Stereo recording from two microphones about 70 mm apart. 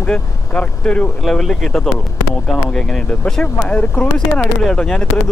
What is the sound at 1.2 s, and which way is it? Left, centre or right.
Speech, centre.